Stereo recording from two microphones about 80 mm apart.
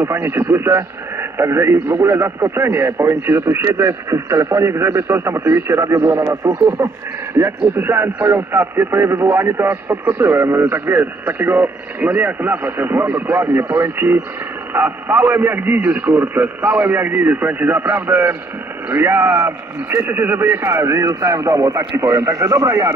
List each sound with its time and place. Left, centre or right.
0.0 s a man's voice: right